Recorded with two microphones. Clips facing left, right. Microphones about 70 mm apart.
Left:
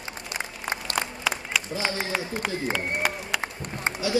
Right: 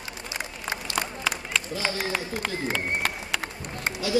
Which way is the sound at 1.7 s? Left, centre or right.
Left.